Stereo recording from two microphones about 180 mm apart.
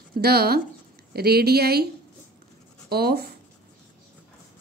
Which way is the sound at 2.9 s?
60° right (ahead or behind).